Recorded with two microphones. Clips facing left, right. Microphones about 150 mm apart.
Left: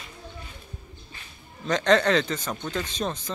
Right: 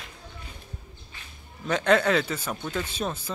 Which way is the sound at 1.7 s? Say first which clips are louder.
Left 1 dB; 10° right (ahead or behind).